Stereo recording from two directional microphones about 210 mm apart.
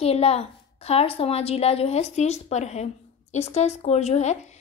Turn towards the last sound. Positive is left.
turn(degrees=30)  # may be behind; listen again after turning